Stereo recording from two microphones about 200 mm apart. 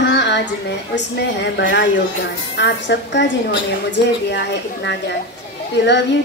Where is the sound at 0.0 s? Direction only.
60° left (ahead or behind).